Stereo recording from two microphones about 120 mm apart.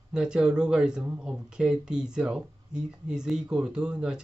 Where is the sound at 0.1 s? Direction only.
5° right (ahead or behind).